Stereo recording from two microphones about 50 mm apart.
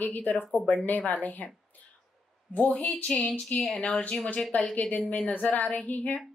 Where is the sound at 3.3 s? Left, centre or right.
Centre.